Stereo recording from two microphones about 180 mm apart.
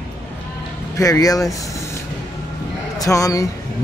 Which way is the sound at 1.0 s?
20° left (ahead or behind).